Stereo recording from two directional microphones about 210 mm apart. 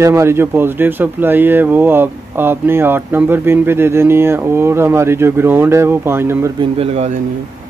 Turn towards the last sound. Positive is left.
turn(degrees=-30)  # may be behind; listen again after turning